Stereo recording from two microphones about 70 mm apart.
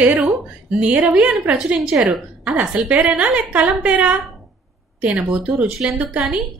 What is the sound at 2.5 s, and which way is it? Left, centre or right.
A woman's voice, centre.